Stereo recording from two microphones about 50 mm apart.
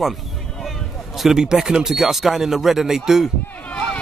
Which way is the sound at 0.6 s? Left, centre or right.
Centre.